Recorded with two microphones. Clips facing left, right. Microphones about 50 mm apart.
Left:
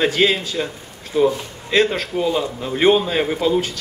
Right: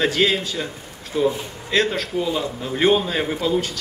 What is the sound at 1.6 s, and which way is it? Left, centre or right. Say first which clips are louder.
A man's voice: left 3 dB; left.